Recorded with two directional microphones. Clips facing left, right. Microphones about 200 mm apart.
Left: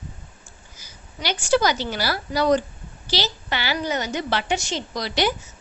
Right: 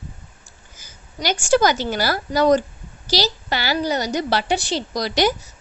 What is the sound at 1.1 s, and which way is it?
A woman's voice, 45° right (ahead or behind).